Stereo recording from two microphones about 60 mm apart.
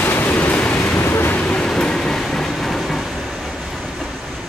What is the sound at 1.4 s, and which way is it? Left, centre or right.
Train, centre.